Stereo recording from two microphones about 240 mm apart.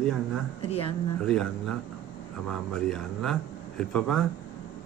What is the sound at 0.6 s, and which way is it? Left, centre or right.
Speech, left.